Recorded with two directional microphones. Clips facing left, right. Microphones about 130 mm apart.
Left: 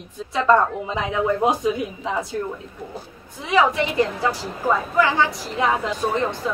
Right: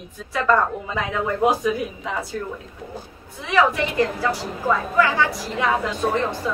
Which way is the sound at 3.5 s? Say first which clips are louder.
Left 1 dB; 20° left (ahead or behind).